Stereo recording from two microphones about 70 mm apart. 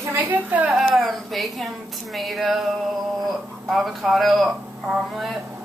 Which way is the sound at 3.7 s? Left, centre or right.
Centre.